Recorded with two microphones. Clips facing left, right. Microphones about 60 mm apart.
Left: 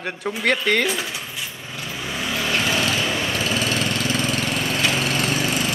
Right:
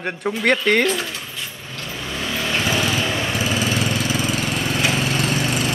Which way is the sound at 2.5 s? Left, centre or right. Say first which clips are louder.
Right 1 dB; centre.